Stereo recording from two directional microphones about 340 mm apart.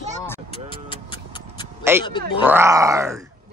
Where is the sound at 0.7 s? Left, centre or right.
Centre.